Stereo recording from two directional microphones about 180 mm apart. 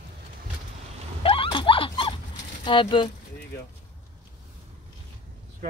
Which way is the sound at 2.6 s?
25° left (ahead or behind).